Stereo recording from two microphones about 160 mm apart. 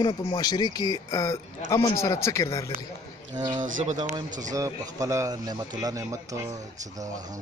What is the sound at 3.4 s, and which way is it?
A man's voice, 25° right (ahead or behind).